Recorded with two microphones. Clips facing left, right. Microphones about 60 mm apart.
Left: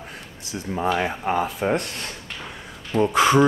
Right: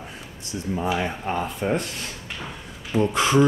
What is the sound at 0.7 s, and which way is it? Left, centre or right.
Speech, left.